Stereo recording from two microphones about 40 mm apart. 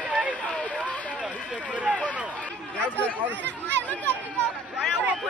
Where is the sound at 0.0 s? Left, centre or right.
Right.